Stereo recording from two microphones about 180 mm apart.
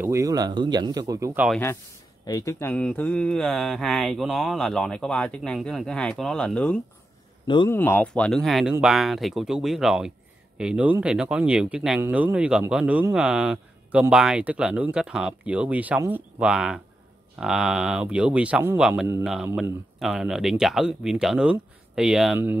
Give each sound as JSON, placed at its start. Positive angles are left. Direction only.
{"t": 0.0, "sound": "speech", "side_deg": -15}
{"t": 2.2, "sound": "speech", "side_deg": 20}
{"t": 7.4, "sound": "speech", "side_deg": 25}
{"t": 7.7, "sound": "speech", "side_deg": 10}